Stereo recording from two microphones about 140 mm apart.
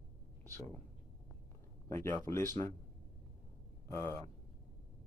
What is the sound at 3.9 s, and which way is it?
Speech, 15° left (ahead or behind).